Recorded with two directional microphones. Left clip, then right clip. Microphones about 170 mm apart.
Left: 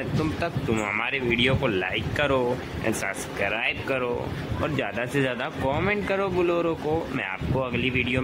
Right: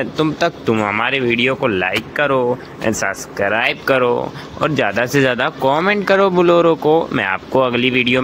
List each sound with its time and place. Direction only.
0.2 s speech: 20° right (ahead or behind)
1.3 s speech: 5° right (ahead or behind)
1.6 s speech: 15° right (ahead or behind)